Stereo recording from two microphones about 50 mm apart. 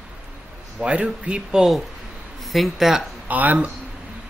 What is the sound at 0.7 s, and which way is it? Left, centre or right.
Speech, right.